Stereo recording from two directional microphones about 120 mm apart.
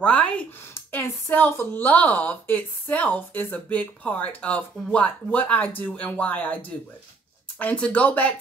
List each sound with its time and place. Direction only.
0.0 s speech: 10° left (ahead or behind)
0.7 s speech: 20° left (ahead or behind)
7.5 s speech: 10° left (ahead or behind)